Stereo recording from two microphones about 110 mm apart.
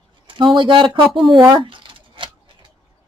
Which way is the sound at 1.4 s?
45° right (ahead or behind).